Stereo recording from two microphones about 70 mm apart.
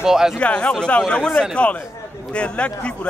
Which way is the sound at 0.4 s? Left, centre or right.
Centre.